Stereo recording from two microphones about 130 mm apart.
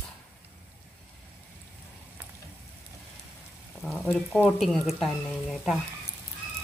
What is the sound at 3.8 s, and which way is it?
Speech, centre (ahead or behind).